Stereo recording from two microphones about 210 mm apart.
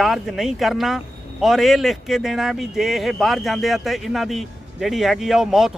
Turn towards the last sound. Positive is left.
turn(degrees=0)  # may be behind; listen again after turning